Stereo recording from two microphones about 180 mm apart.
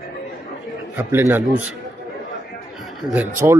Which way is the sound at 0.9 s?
10° right (ahead or behind).